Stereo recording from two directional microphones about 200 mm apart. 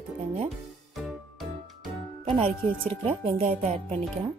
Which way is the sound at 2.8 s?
30° right (ahead or behind).